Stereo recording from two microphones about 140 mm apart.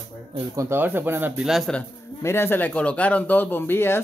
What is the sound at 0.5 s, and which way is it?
Speech, 15° right (ahead or behind).